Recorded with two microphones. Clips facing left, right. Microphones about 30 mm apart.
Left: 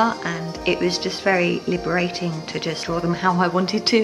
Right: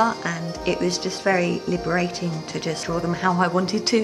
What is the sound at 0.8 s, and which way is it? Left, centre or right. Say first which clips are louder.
Speech: left 2 dB; left.